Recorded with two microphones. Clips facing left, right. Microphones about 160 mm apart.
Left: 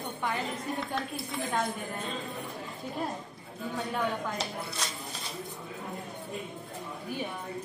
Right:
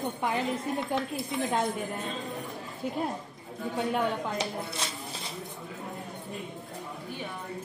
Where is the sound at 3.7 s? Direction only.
20° right (ahead or behind).